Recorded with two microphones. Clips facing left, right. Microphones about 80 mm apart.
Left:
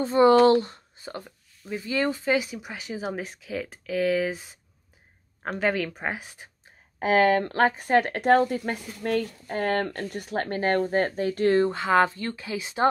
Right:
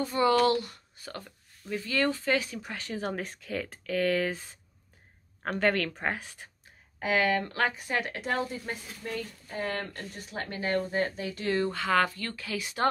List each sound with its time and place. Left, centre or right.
0.0 s speech: left
7.0 s speech: left
11.7 s speech: left